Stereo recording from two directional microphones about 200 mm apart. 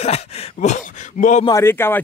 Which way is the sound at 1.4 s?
15° left (ahead or behind).